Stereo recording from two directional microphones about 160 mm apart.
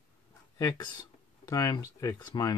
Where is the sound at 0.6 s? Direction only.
20° left (ahead or behind).